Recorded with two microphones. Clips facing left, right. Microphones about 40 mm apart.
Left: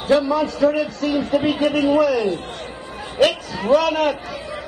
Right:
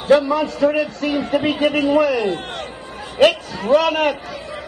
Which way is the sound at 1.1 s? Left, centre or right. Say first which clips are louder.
Even; centre.